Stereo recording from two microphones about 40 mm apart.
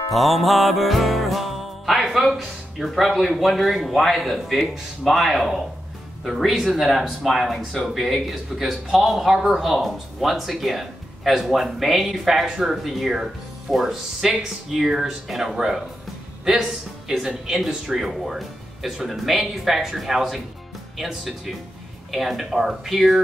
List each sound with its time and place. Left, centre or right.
0.1 s music: centre
12.1 s speech: centre
19.0 s music: centre
19.4 s speech: centre
22.1 s speech: centre